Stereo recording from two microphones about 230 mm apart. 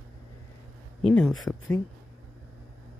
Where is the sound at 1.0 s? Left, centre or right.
Centre.